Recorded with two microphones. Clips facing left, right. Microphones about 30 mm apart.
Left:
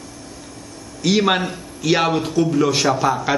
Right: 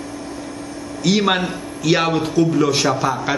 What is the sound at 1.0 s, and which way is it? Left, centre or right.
A man's voice, centre.